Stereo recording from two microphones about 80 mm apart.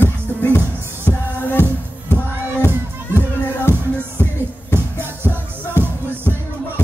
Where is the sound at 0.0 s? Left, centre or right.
Left.